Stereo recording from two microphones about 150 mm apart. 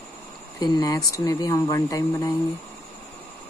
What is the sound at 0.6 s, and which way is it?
Speech, 25° left (ahead or behind).